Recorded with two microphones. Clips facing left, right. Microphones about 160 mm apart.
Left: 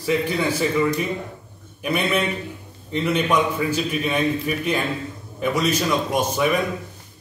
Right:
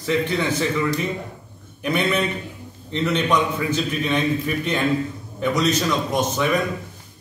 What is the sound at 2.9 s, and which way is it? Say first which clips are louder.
A man's voice: even; 5° left (ahead or behind).